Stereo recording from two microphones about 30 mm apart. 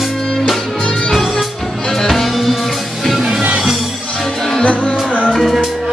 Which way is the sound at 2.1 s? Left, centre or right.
Centre.